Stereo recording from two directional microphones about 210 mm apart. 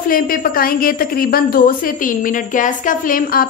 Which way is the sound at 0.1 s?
45° left (ahead or behind).